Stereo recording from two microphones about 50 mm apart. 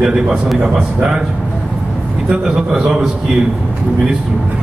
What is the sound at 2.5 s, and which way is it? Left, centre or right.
Speech, centre.